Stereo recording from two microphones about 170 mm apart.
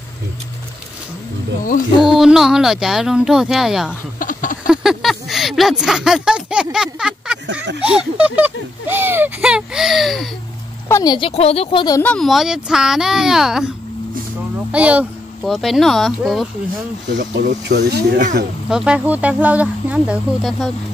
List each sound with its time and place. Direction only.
2.0 s speech: centre (ahead or behind)
4.2 s a sound: 50° left (ahead or behind)
4.6 s a sound: centre (ahead or behind)
7.8 s speech: 5° right (ahead or behind)
10.9 s a woman's voice: 20° left (ahead or behind)
11.1 s speech: 35° left (ahead or behind)
12.0 s speech: 5° left (ahead or behind)
14.7 s speech: 5° right (ahead or behind)
17.4 s speech: 75° right (ahead or behind)
18.7 s speech: 5° right (ahead or behind)